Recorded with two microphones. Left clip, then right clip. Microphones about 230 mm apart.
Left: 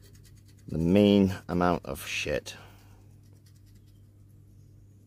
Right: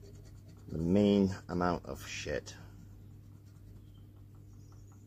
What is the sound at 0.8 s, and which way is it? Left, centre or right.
Speech, left.